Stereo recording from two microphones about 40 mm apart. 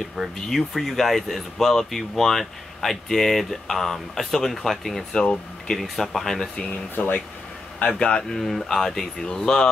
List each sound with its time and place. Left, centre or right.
0.5 s speech: centre
5.1 s speech: left
5.8 s speech: centre
6.5 s speech: left
8.3 s speech: centre